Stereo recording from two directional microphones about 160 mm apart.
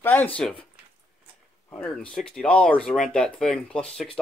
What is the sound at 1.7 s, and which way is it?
Speech, 5° left (ahead or behind).